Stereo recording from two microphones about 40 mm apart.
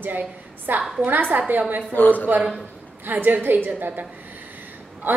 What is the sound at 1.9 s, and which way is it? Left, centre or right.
Speech, left.